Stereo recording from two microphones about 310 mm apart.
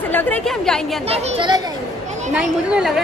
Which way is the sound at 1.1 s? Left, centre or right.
Centre.